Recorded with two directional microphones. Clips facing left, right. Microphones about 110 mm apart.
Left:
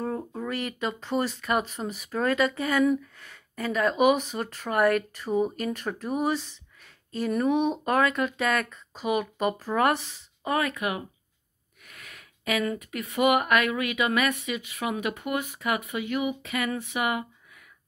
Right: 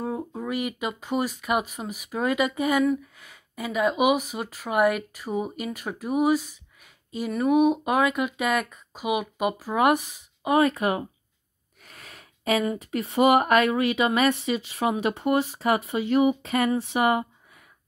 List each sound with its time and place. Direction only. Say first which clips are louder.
0.0 s speech: right 1 dB; 5° right (ahead or behind)
10.6 s speech: right 6 dB; 30° right (ahead or behind)
11.8 s a sound: right 1 dB; 30° right (ahead or behind)
12.6 s speech: right 3 dB; 30° right (ahead or behind)